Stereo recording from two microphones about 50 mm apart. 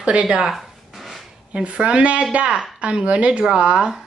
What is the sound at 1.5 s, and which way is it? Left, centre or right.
A woman's voice, right.